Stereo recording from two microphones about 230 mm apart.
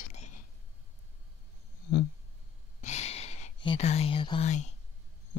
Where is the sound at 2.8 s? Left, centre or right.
Left.